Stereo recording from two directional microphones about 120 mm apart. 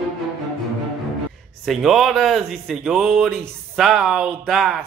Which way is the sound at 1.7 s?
Centre (ahead or behind).